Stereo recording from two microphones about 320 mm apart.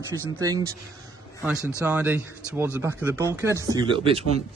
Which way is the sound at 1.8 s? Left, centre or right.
Centre.